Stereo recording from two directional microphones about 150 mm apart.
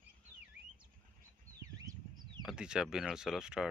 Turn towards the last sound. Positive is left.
turn(degrees=-5)  # may be behind; listen again after turning